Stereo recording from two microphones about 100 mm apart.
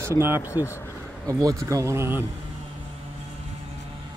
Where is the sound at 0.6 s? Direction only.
50° left (ahead or behind).